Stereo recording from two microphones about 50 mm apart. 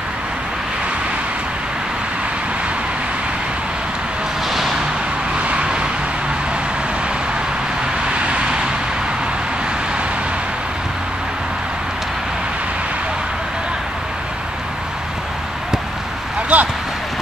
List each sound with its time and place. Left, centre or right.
4.5 s a sound: centre
5.4 s vehicle: right
8.3 s vehicle: centre
16.5 s speech: right